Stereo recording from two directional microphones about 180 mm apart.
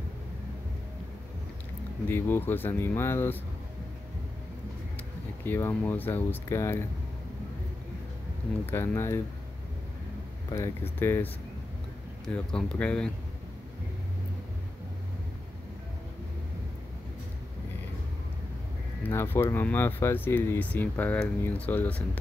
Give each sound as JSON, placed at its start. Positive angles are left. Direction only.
{"t": 2.0, "sound": "speech", "side_deg": 10}
{"t": 5.4, "sound": "speech", "side_deg": 10}
{"t": 8.6, "sound": "speech", "side_deg": 15}
{"t": 10.5, "sound": "speech", "side_deg": 15}
{"t": 12.4, "sound": "speech", "side_deg": 5}
{"t": 19.0, "sound": "speech", "side_deg": 10}